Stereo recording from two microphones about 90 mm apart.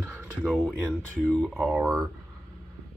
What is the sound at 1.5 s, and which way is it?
Speech, 15° right (ahead or behind).